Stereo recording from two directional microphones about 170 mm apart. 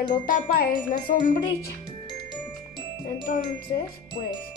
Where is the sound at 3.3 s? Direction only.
55° left (ahead or behind).